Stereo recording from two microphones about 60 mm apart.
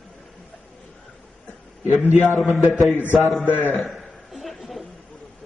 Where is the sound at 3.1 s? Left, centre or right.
Centre.